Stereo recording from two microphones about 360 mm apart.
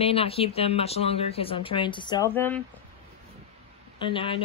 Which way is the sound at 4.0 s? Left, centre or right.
Centre.